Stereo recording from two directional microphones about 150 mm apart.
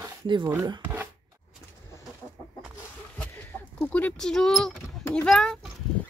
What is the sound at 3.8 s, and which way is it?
Speech, 10° left (ahead or behind).